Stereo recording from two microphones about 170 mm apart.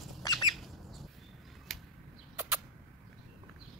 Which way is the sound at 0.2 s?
25° left (ahead or behind).